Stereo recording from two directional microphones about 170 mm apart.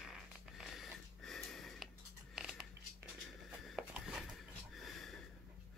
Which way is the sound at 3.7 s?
5° right (ahead or behind).